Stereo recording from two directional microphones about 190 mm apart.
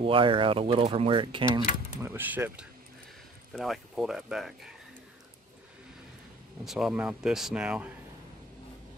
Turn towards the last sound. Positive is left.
turn(degrees=-5)  # may be behind; listen again after turning